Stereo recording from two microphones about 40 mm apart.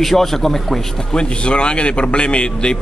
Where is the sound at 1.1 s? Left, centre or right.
Left.